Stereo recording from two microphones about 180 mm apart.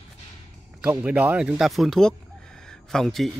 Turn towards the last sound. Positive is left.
turn(degrees=0)  # may be behind; listen again after turning